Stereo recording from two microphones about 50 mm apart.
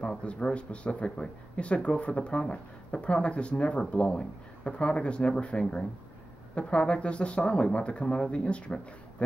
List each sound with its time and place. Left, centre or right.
0.0 s speech: left